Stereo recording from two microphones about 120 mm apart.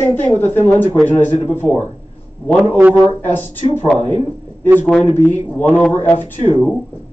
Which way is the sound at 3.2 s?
15° left (ahead or behind).